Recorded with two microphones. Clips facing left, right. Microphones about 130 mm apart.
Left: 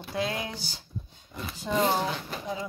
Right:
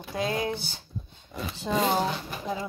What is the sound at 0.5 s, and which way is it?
Speech, 55° right (ahead or behind).